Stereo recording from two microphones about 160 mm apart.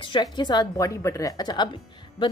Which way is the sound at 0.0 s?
30° left (ahead or behind).